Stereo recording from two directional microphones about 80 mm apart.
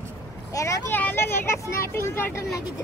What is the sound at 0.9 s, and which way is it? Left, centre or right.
Speech, left.